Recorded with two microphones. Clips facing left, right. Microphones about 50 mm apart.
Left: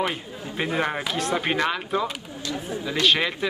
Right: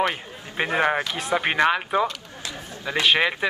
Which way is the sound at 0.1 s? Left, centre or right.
Right.